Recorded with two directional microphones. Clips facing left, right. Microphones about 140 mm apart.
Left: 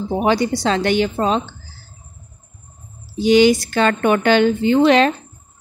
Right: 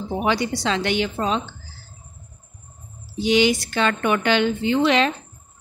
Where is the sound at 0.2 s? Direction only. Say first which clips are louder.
Left 5 dB; 40° left (ahead or behind).